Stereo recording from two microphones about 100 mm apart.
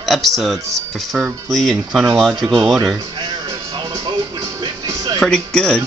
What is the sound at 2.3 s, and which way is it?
Speech, 45° right (ahead or behind).